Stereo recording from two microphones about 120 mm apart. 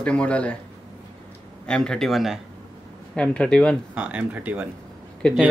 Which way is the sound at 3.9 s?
15° right (ahead or behind).